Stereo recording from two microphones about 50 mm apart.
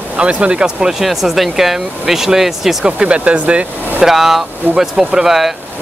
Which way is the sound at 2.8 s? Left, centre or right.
Centre.